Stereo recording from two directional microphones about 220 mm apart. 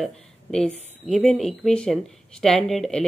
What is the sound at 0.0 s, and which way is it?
A woman's voice, 5° left (ahead or behind).